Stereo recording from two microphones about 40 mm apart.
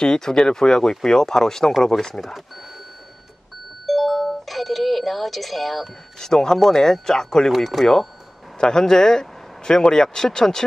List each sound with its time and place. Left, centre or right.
0.0 s speech: centre
2.2 s speech: centre
3.8 s doorbell: centre
6.1 s speech: centre
8.5 s speech: centre